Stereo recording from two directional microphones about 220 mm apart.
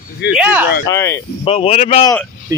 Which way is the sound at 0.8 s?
15° left (ahead or behind).